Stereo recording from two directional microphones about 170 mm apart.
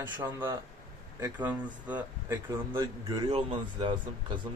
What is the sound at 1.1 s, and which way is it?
A man's voice, 10° right (ahead or behind).